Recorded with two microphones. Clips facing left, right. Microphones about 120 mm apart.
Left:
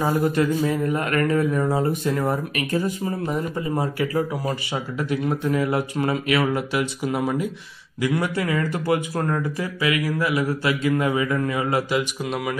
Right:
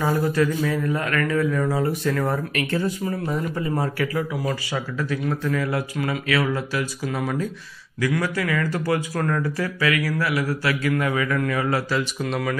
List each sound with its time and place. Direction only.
0.0 s speech: 20° left (ahead or behind)
4.2 s speech: 35° left (ahead or behind)
4.7 s speech: 20° left (ahead or behind)
12.0 s speech: 10° left (ahead or behind)